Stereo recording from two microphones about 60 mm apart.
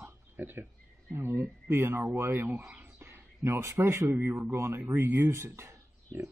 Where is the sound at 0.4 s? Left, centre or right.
Right.